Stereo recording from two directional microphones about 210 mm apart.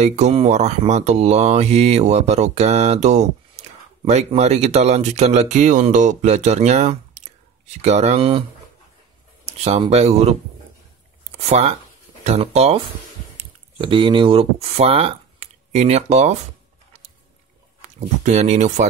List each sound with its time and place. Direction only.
0.0 s mantra: 30° right (ahead or behind)
9.5 s speech: 30° right (ahead or behind)
11.4 s speech: 30° right (ahead or behind)
17.9 s mantra: 35° right (ahead or behind)